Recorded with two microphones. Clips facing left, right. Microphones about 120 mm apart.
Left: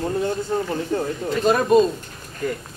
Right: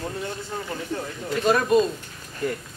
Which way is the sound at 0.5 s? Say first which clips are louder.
Left 7 dB; 45° left (ahead or behind).